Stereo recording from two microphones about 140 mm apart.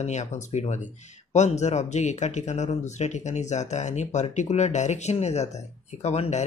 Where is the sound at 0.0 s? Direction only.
55° left (ahead or behind).